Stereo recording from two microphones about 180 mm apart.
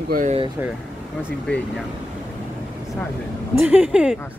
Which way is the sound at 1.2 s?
5° left (ahead or behind).